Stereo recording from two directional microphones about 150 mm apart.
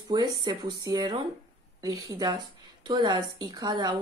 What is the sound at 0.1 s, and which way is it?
A woman's voice, 30° right (ahead or behind).